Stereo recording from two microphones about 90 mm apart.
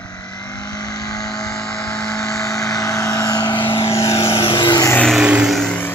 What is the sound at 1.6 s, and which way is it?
Vehicle, 5° left (ahead or behind).